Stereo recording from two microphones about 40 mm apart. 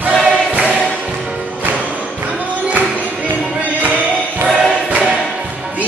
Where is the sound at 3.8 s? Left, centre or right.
Right.